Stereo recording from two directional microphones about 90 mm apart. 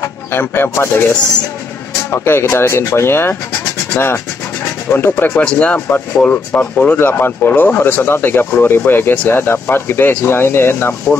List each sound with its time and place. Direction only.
0.0 s speech: 25° left (ahead or behind)
5.4 s speech: 15° left (ahead or behind)